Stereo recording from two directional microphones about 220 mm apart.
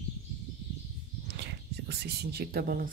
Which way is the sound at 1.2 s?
50° right (ahead or behind).